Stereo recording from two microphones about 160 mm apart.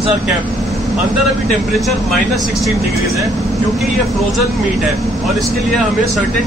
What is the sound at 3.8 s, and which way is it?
Speech, centre (ahead or behind).